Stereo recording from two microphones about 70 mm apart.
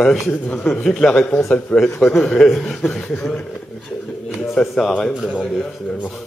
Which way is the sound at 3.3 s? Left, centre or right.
Centre.